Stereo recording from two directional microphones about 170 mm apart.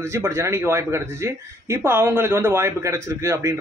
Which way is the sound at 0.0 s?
15° right (ahead or behind).